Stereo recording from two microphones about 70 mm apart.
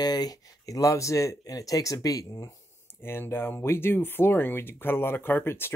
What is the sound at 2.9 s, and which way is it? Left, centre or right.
Speech, left.